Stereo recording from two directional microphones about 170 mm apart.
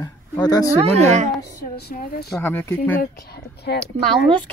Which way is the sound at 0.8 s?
40° right (ahead or behind).